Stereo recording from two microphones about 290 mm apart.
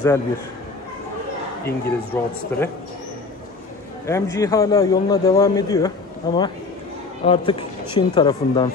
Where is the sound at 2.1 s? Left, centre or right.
Centre.